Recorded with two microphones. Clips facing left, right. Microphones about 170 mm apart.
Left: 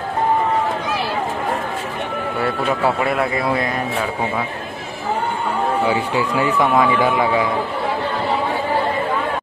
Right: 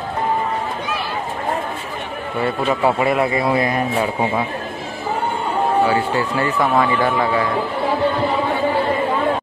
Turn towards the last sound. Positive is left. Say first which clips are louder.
# left 1 dB
turn(degrees=10)  # may be behind; listen again after turning